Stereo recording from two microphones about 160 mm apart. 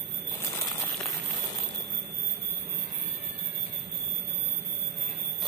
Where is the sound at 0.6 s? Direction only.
20° left (ahead or behind).